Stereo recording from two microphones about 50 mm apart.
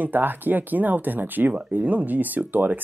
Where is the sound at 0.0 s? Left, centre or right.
Right.